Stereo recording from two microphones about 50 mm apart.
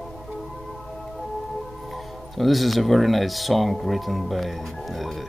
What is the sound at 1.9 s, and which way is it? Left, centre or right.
Speech, centre.